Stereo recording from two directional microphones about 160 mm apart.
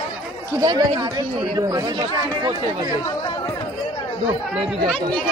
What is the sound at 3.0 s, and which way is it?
Chatter, 20° left (ahead or behind).